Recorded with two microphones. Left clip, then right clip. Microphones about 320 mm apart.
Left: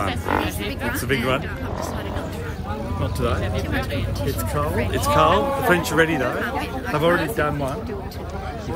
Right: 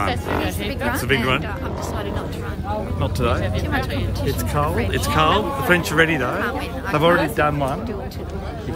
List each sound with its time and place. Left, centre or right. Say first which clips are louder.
0.9 s speech: right 2 dB; centre
3.0 s speech: right 2 dB; centre
4.9 s speech: left 2 dB; centre